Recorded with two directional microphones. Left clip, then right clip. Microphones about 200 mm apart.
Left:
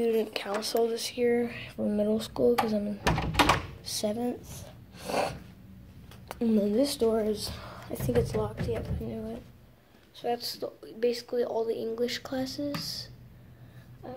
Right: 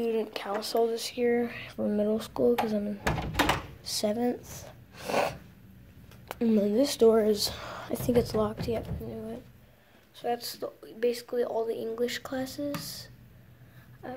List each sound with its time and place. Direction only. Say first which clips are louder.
0.0 s speech: left 2 dB; centre (ahead or behind)
3.8 s speech: right 2 dB; 15° right (ahead or behind)
9.0 s speech: left 1 dB; centre (ahead or behind)
14.0 s speech: right 2 dB; 15° right (ahead or behind)